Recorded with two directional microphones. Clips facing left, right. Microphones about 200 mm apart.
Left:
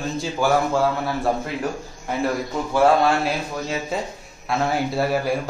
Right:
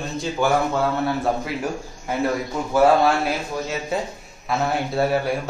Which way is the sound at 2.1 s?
Centre (ahead or behind).